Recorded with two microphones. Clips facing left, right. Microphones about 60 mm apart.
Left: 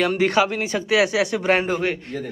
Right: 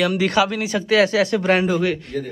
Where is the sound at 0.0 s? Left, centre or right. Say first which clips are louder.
Even; left.